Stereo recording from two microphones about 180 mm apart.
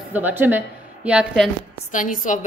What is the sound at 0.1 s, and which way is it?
A woman's voice, 10° right (ahead or behind).